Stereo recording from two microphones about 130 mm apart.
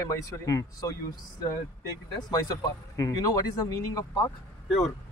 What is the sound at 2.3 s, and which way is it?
Speech, 30° left (ahead or behind).